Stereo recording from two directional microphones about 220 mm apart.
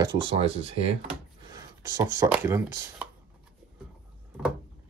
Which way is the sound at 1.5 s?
15° right (ahead or behind).